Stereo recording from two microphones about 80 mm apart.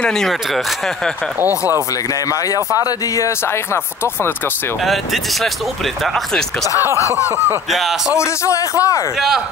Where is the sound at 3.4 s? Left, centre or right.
Left.